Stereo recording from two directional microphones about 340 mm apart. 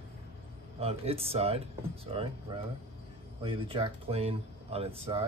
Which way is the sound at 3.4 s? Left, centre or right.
Centre.